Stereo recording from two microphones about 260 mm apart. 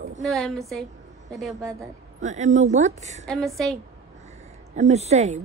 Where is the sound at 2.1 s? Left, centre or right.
Right.